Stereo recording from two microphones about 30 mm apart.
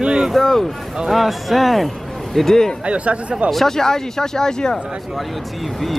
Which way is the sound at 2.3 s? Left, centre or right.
Centre.